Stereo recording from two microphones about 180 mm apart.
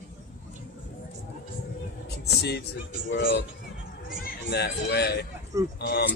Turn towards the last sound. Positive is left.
turn(degrees=60)  # may be behind; listen again after turning